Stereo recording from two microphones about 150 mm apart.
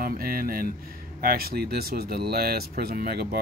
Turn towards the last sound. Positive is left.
turn(degrees=-90)